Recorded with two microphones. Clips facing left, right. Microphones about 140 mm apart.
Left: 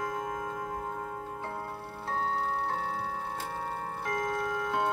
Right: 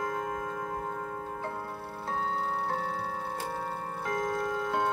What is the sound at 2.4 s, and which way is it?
Music, centre (ahead or behind).